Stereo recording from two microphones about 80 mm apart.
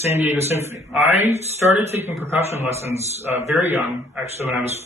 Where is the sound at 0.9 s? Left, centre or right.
Right.